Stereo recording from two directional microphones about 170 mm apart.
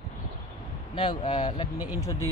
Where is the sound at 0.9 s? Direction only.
30° left (ahead or behind).